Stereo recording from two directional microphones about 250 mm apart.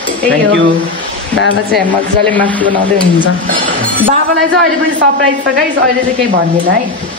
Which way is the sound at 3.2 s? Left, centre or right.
Right.